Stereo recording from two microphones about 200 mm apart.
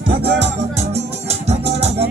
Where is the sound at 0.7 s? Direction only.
35° right (ahead or behind).